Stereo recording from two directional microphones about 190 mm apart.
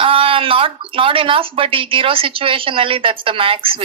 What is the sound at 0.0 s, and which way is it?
Speech, 30° right (ahead or behind).